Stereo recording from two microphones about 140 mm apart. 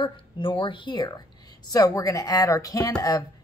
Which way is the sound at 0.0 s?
35° left (ahead or behind).